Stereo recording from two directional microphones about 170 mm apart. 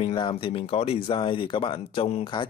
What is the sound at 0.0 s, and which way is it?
Speech, 30° left (ahead or behind).